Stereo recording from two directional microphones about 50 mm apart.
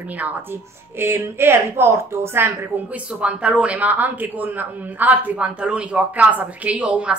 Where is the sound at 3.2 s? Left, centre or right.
Right.